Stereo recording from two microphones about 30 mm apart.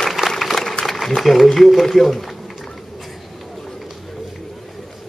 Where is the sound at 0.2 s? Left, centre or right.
Right.